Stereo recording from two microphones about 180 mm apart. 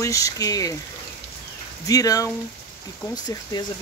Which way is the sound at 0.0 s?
20° left (ahead or behind).